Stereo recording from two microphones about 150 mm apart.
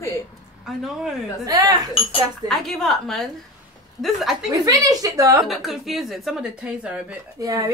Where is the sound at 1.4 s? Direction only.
25° right (ahead or behind).